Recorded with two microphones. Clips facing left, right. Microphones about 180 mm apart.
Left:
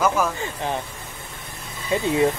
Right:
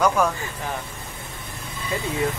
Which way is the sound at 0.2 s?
5° left (ahead or behind).